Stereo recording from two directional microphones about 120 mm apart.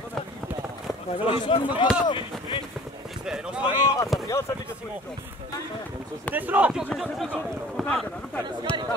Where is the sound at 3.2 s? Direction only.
5° right (ahead or behind).